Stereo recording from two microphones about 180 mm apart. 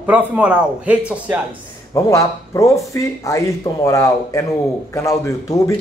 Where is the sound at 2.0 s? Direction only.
15° left (ahead or behind).